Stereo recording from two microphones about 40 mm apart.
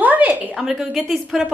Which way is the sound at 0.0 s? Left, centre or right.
Right.